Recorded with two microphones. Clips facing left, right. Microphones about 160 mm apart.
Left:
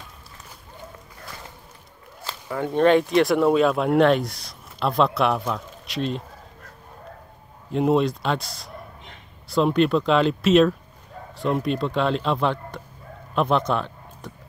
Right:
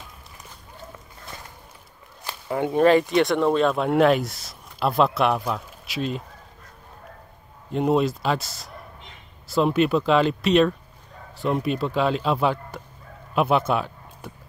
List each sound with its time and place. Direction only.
2.2 s a sound: 20° right (ahead or behind)
2.7 s speech: centre (ahead or behind)
7.7 s speech: centre (ahead or behind)